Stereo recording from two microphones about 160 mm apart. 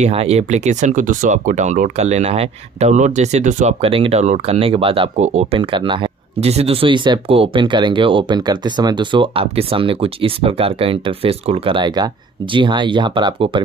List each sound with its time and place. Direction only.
0.0 s speech: 40° right (ahead or behind)